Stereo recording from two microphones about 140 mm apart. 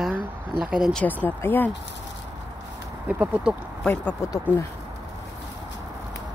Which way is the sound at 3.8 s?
15° left (ahead or behind).